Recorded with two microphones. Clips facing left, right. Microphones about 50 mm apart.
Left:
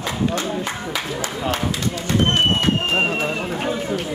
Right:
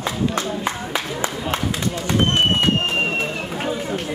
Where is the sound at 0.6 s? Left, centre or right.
Right.